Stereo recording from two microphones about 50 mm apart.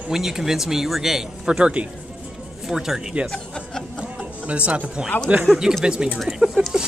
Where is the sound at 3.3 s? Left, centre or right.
Centre.